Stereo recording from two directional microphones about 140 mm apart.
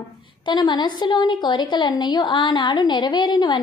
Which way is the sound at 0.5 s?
30° left (ahead or behind).